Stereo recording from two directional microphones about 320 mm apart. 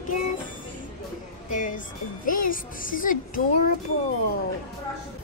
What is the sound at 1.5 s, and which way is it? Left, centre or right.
Music, left.